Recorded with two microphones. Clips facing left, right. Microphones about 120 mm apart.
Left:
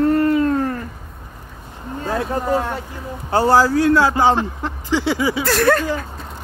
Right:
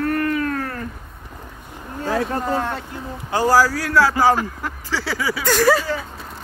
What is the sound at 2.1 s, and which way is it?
Speech, 10° left (ahead or behind).